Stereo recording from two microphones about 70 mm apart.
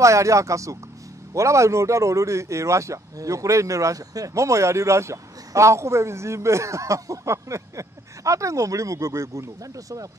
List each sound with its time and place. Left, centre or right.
0.0 s speech: right